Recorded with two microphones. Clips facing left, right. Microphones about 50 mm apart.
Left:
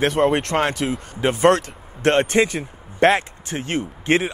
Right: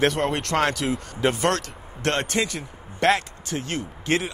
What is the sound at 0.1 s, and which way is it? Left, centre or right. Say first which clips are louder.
Speech: left 6 dB; left.